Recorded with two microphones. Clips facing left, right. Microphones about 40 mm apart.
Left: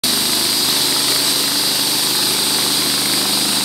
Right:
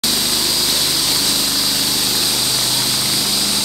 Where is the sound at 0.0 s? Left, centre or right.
Centre.